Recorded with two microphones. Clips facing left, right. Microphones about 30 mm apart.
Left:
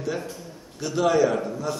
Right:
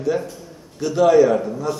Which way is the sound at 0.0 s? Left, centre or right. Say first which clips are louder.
Right 7 dB; centre.